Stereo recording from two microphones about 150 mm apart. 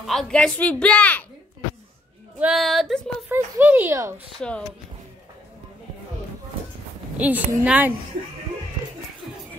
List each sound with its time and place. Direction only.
0.0 s speech: centre (ahead or behind)
2.3 s speech: 5° right (ahead or behind)
3.3 s a child's voice: 15° right (ahead or behind)
4.4 s speech: 5° left (ahead or behind)
7.2 s a child's voice: 10° right (ahead or behind)